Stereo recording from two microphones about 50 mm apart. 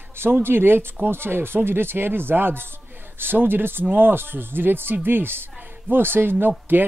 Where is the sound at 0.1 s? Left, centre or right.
Right.